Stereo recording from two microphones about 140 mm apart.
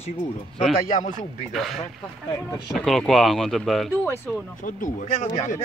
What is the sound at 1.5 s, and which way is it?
Speech, centre (ahead or behind).